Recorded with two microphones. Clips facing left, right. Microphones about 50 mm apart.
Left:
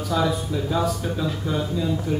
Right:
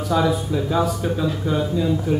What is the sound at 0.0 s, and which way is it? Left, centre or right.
A man's voice, centre.